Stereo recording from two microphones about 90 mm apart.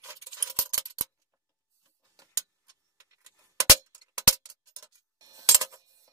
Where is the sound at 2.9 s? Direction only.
35° right (ahead or behind).